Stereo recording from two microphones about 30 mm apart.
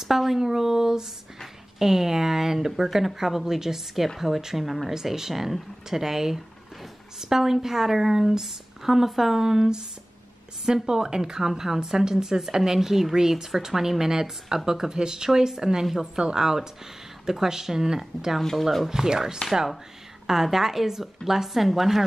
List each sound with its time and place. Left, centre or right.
0.0 s a sound: centre
1.8 s a woman's voice: centre
18.6 s speech: centre
18.9 s a woman's voice: centre